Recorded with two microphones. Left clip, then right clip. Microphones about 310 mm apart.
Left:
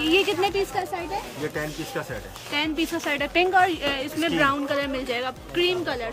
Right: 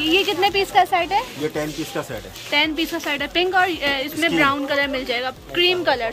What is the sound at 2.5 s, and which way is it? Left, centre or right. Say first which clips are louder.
A woman's voice: right 6 dB; centre.